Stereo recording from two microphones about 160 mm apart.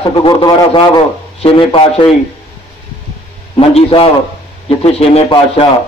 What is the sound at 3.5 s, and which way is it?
A man's voice, 35° left (ahead or behind).